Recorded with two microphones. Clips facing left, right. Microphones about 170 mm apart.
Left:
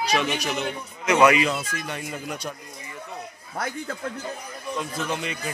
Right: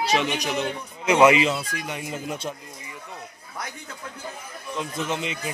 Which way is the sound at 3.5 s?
55° left (ahead or behind).